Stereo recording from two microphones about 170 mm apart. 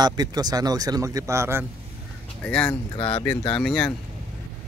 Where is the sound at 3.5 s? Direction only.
5° left (ahead or behind).